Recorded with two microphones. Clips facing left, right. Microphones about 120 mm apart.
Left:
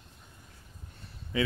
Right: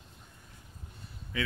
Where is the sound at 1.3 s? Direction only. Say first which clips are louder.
Left 5 dB; 20° left (ahead or behind).